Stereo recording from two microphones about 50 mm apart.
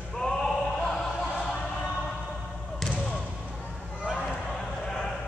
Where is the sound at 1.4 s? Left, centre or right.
Centre.